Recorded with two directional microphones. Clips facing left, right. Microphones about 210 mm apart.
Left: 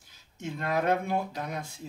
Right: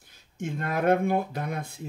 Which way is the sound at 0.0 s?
55° right (ahead or behind).